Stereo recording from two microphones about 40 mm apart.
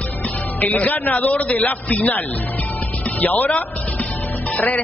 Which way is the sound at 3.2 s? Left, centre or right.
Left.